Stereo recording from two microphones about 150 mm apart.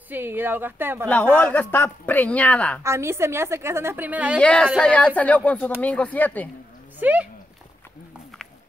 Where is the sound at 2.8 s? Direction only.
20° right (ahead or behind).